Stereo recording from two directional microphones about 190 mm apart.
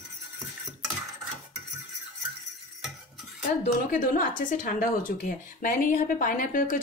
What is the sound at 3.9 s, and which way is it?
Speech, 45° left (ahead or behind).